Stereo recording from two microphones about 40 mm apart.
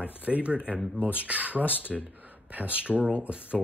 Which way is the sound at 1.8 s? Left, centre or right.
Left.